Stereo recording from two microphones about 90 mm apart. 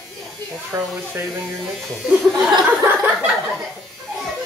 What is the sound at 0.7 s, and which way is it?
Speech, 30° right (ahead or behind).